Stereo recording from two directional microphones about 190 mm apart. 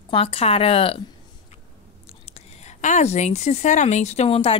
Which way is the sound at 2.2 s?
35° left (ahead or behind).